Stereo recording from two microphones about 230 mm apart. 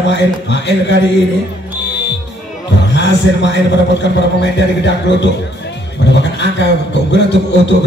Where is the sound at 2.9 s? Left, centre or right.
Left.